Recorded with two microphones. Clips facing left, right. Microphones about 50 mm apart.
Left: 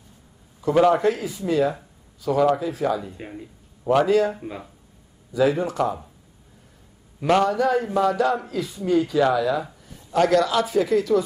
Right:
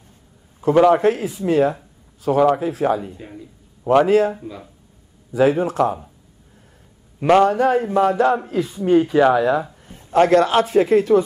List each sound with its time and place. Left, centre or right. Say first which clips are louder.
0.7 s a man's voice: right 4 dB; right
1.0 s a man's voice: right 4 dB; right
3.2 s speech: even; left
3.8 s a man's voice: right 4 dB; right
7.2 s a man's voice: right 5 dB; right
7.4 s a man's voice: right 4 dB; right